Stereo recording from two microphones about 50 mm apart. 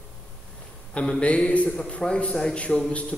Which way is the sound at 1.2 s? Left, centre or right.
Left.